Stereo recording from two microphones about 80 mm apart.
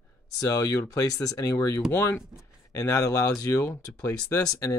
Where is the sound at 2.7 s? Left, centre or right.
Left.